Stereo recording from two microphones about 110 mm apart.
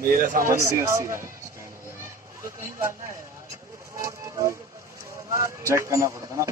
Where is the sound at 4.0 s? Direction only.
30° right (ahead or behind).